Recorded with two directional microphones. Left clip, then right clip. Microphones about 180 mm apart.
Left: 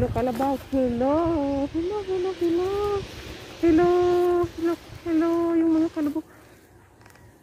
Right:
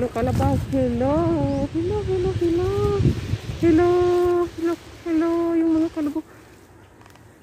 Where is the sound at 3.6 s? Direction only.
10° left (ahead or behind).